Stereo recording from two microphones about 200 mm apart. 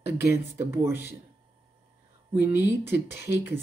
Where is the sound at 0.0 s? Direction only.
55° left (ahead or behind).